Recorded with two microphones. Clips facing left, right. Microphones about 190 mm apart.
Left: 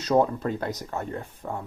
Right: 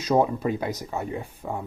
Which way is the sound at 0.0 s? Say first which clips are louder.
Even; 10° right (ahead or behind).